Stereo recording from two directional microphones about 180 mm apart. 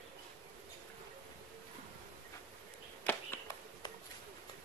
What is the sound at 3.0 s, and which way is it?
Arrow, 10° left (ahead or behind).